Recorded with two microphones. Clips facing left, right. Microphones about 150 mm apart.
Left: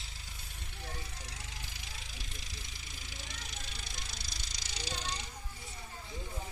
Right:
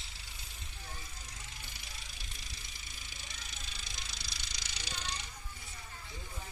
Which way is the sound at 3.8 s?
50° left (ahead or behind).